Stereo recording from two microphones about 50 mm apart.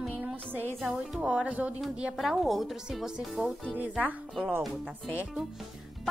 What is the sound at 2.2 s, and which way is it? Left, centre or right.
A woman's voice, centre.